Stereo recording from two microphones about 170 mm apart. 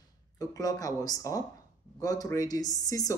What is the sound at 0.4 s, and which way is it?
Speech, 20° left (ahead or behind).